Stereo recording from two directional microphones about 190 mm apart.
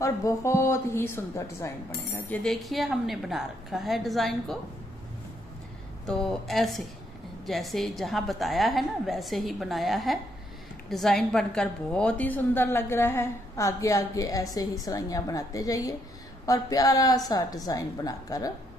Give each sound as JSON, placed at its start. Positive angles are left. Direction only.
{"t": 0.0, "sound": "a woman's voice", "side_deg": 15}
{"t": 6.0, "sound": "a woman's voice", "side_deg": 0}